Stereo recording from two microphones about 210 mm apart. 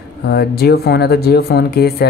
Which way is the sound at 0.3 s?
45° left (ahead or behind).